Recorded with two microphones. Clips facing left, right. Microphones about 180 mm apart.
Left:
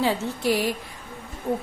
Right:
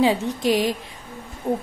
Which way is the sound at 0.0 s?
15° right (ahead or behind).